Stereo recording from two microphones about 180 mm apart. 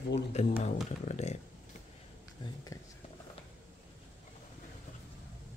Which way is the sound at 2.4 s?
25° left (ahead or behind).